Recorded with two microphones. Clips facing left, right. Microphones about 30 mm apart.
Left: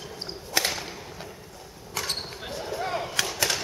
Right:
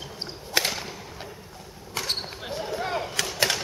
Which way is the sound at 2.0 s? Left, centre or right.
Centre.